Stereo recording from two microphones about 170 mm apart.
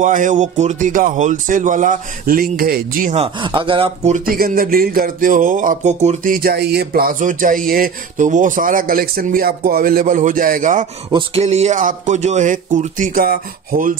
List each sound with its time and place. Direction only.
0.0 s speech: 50° right (ahead or behind)
3.2 s speech: 30° right (ahead or behind)
4.3 s speech: 55° right (ahead or behind)
11.1 s a sound: 30° right (ahead or behind)
11.4 s speech: 40° right (ahead or behind)